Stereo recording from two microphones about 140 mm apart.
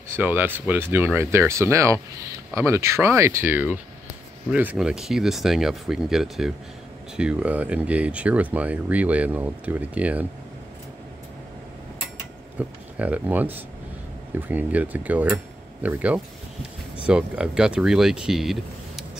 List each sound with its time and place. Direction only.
0.1 s speech: 15° right (ahead or behind)
12.5 s speech: 10° right (ahead or behind)